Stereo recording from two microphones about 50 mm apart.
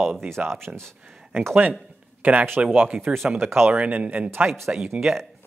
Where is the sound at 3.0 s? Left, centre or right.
Centre.